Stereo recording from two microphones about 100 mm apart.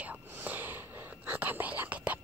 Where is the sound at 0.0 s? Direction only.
15° right (ahead or behind).